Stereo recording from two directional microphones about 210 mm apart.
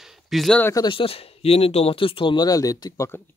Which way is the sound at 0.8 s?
25° left (ahead or behind).